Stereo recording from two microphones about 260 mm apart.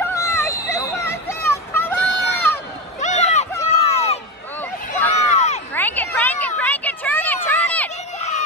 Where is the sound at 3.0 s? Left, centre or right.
Left.